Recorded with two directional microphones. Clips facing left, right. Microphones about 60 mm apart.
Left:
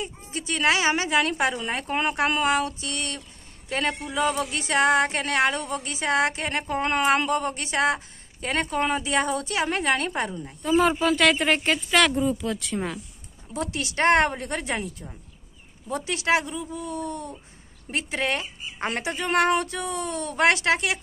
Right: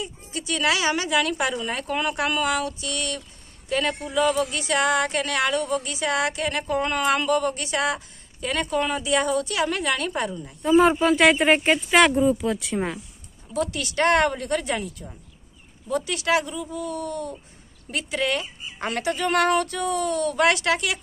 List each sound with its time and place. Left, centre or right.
0.0 s a sound: left
10.6 s speech: centre
13.6 s speech: left